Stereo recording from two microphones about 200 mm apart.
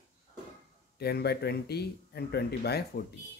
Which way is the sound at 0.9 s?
55° left (ahead or behind).